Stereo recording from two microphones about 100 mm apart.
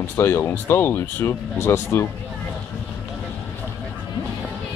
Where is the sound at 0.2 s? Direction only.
25° left (ahead or behind).